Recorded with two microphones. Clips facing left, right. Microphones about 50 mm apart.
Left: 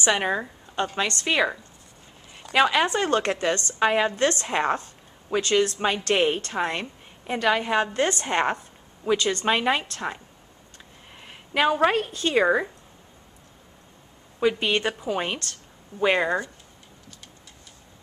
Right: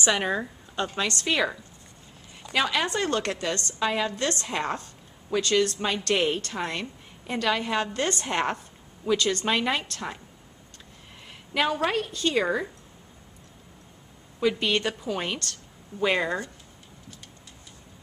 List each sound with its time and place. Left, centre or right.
0.0 s a woman's voice: centre
11.2 s a woman's voice: left
14.5 s a woman's voice: centre